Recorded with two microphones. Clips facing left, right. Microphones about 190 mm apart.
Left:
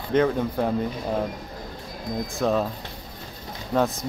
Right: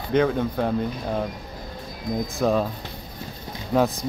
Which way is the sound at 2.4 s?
Centre (ahead or behind).